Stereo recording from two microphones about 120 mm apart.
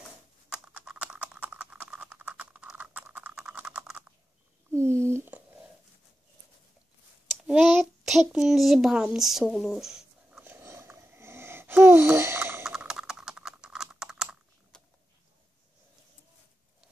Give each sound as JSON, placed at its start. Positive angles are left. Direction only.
{"t": 0.5, "sound": "computer keyboard", "side_deg": -10}
{"t": 4.6, "sound": "a sound", "side_deg": -20}
{"t": 7.6, "sound": "child singing", "side_deg": 0}
{"t": 10.4, "sound": "wheeze", "side_deg": -20}
{"t": 12.6, "sound": "computer keyboard", "side_deg": -5}
{"t": 14.7, "sound": "a sound", "side_deg": 5}